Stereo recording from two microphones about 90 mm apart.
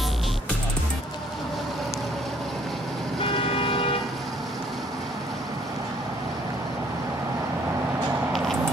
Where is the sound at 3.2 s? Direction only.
85° left.